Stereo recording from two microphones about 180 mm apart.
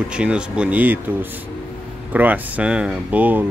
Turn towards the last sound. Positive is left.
turn(degrees=-10)  # may be behind; listen again after turning